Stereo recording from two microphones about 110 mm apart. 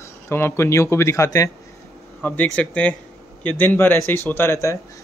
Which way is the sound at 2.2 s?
10° left (ahead or behind).